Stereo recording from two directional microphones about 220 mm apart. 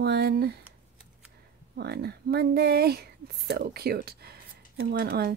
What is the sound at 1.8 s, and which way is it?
Speech, 45° right (ahead or behind).